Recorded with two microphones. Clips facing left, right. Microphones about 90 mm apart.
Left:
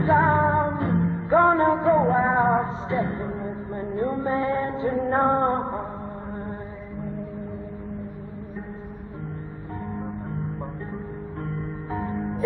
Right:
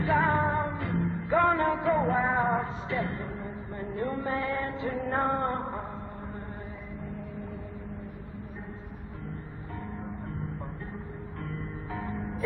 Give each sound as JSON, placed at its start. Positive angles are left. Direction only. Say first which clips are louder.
{"t": 0.2, "sound": "music", "louder": "left 6 dB", "side_deg": 35}
{"t": 11.9, "sound": "music", "louder": "left 7 dB", "side_deg": 30}